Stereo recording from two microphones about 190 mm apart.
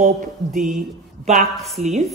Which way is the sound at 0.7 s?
40° right (ahead or behind).